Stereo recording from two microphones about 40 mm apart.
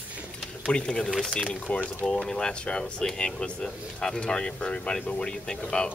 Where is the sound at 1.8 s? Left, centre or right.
Centre.